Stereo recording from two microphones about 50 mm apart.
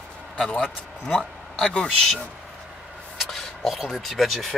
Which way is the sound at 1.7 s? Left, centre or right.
Centre.